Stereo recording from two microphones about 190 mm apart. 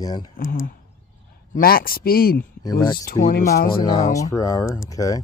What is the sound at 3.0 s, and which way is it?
Speech, 40° left (ahead or behind).